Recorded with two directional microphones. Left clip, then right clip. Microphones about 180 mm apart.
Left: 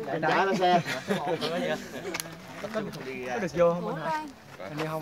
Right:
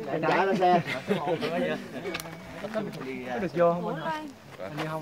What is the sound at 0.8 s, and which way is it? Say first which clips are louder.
Speech: right 1 dB; centre (ahead or behind).